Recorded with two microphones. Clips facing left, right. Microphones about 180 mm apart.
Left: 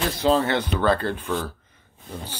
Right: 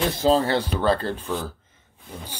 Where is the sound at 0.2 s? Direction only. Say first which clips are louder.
Even; 30° right (ahead or behind).